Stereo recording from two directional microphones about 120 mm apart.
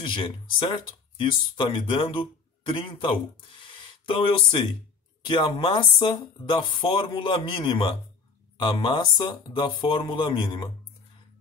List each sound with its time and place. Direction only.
0.0 s speech: 45° left (ahead or behind)